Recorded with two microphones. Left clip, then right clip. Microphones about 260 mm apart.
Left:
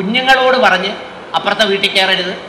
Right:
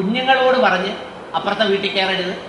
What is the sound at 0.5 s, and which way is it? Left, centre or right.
A man's voice, right.